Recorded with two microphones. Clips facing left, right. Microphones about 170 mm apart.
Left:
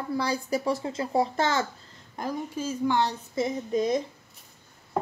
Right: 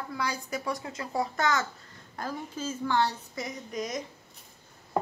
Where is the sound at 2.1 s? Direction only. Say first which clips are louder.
Left 4 dB; 15° left (ahead or behind).